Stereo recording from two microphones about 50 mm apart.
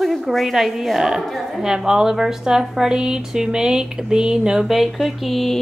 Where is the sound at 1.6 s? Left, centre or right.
Centre.